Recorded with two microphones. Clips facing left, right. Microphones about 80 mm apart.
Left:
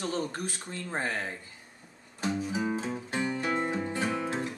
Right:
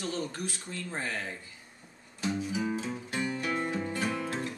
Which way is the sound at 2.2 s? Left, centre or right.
Left.